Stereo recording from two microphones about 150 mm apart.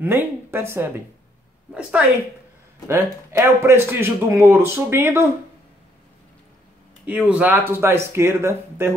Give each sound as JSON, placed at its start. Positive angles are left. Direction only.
{"t": 0.0, "sound": "a man's voice", "side_deg": -15}
{"t": 2.9, "sound": "a man's voice", "side_deg": -15}
{"t": 7.1, "sound": "a man's voice", "side_deg": -10}